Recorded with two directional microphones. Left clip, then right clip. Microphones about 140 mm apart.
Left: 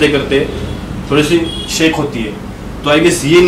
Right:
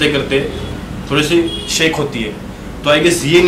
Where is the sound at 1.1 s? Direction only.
10° right (ahead or behind).